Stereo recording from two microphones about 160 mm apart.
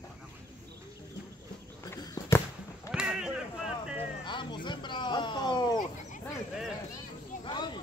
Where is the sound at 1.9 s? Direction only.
15° left (ahead or behind).